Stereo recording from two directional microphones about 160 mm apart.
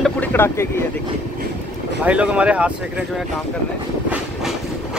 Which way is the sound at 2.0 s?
5° right (ahead or behind).